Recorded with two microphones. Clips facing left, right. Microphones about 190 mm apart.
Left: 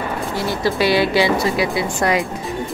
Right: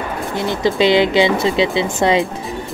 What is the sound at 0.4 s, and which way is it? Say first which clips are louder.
Speech: right 4 dB; 20° right (ahead or behind).